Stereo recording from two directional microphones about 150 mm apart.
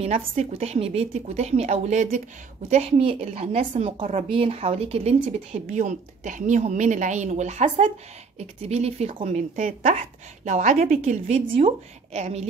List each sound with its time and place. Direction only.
0.0 s speech: 45° right (ahead or behind)
2.7 s speech: 40° right (ahead or behind)
5.7 s speech: 55° right (ahead or behind)